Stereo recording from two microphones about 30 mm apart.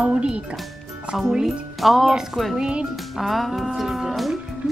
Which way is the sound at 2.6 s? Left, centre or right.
Right.